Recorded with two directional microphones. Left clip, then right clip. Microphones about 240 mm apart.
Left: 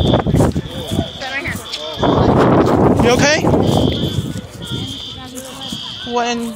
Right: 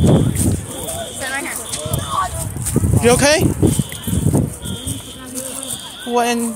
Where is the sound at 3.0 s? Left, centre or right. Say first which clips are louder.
Even; centre.